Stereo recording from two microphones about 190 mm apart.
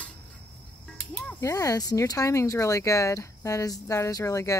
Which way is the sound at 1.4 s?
15° left (ahead or behind).